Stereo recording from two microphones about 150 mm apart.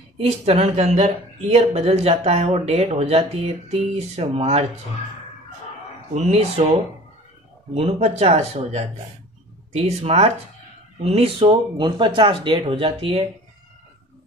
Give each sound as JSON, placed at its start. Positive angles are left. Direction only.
{"t": 0.2, "sound": "speech", "side_deg": -40}
{"t": 6.1, "sound": "speech", "side_deg": -50}
{"t": 7.7, "sound": "speech", "side_deg": -45}